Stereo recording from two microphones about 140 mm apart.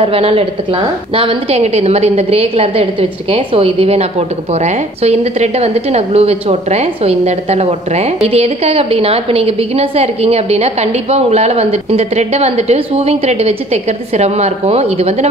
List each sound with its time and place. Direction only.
0.0 s a woman's voice: 45° right (ahead or behind)